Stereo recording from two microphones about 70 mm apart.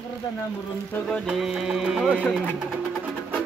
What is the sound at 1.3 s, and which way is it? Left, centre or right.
Music, centre.